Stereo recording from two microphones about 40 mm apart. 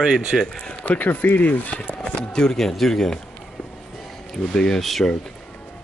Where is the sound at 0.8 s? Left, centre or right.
Left.